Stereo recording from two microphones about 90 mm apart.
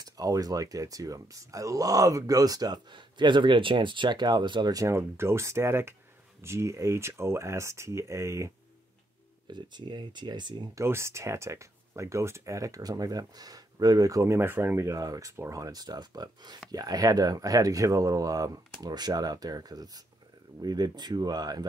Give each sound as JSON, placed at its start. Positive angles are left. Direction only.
{"t": 0.0, "sound": "speech", "side_deg": -40}
{"t": 4.7, "sound": "speech", "side_deg": -30}
{"t": 9.5, "sound": "speech", "side_deg": -55}
{"t": 10.8, "sound": "speech", "side_deg": -30}